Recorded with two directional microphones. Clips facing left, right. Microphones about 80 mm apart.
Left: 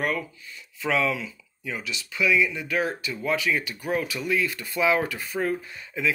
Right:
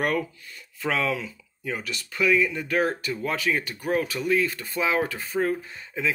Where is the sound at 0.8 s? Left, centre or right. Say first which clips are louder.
Left 1 dB; right.